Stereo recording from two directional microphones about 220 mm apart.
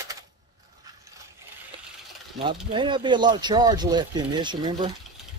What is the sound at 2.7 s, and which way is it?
Speech, 20° right (ahead or behind).